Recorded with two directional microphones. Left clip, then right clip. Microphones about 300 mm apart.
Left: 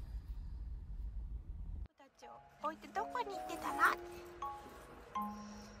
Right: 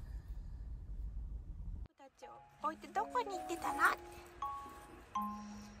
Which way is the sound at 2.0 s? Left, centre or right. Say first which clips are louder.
Right 1 dB; centre.